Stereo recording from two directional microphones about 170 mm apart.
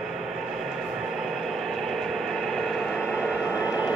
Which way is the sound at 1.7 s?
Centre (ahead or behind).